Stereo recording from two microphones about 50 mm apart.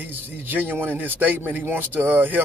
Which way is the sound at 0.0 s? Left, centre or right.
Right.